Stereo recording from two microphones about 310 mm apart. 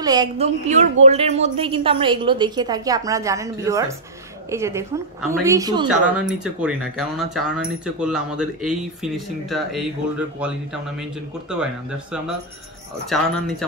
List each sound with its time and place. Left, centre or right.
0.0 s a woman's voice: centre